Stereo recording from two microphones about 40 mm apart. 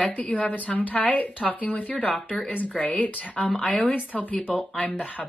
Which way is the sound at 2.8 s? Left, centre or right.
Left.